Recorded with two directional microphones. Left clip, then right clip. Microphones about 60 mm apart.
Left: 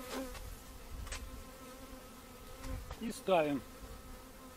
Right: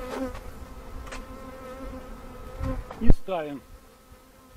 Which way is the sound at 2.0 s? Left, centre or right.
Left.